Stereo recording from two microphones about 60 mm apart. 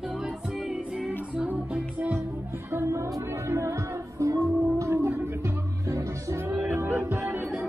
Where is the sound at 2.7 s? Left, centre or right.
Right.